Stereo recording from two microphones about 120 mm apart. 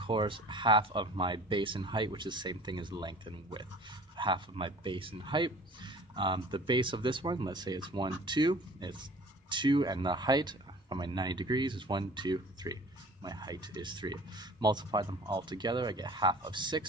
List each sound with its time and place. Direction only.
0.0 s speech: 45° right (ahead or behind)